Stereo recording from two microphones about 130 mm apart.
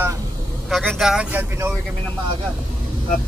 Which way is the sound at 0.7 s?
Centre (ahead or behind).